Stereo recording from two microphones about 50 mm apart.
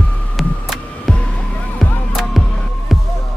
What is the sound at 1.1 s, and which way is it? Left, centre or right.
Music, left.